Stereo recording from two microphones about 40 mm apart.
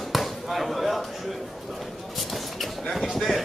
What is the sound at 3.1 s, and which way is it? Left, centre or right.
Chopping, centre.